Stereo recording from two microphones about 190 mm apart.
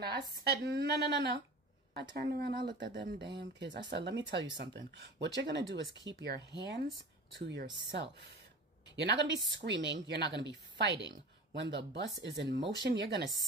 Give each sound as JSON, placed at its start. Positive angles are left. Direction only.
{"t": 0.4, "sound": "speech", "side_deg": -55}
{"t": 8.9, "sound": "speech", "side_deg": -65}